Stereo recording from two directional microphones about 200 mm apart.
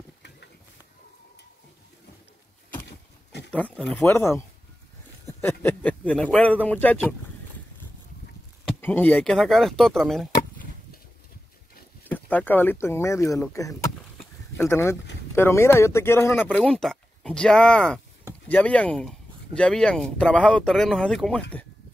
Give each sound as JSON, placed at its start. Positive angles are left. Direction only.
{"t": 2.7, "sound": "a sound", "side_deg": 55}
{"t": 3.5, "sound": "speech", "side_deg": 5}
{"t": 8.8, "sound": "speech", "side_deg": 10}
{"t": 12.1, "sound": "speech", "side_deg": 10}
{"t": 14.1, "sound": "a sound", "side_deg": 10}
{"t": 15.3, "sound": "speech", "side_deg": 10}